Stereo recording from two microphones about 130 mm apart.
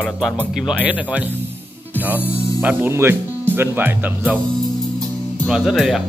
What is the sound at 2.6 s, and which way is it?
Speech, 15° right (ahead or behind).